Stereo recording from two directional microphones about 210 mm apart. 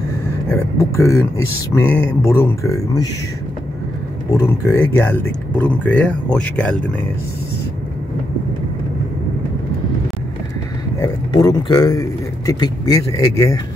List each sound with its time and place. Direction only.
0.5 s a man's voice: 15° left (ahead or behind)
4.3 s speech: 15° left (ahead or behind)
11.0 s a man's voice: 15° left (ahead or behind)